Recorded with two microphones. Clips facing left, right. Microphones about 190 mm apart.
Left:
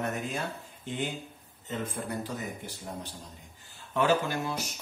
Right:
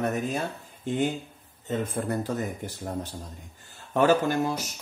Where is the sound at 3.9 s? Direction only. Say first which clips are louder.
Right 5 dB; 45° right (ahead or behind).